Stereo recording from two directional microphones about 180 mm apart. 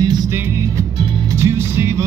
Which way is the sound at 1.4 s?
15° right (ahead or behind).